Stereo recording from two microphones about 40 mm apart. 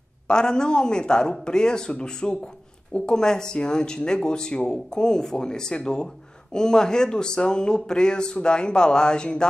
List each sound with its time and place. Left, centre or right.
0.3 s speech: centre